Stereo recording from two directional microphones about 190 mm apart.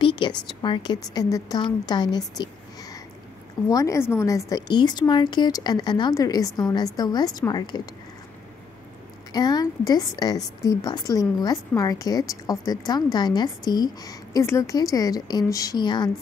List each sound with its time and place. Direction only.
0.0 s a sound: 25° left (ahead or behind)
0.5 s a woman's voice: 25° left (ahead or behind)
9.3 s a woman's voice: 20° left (ahead or behind)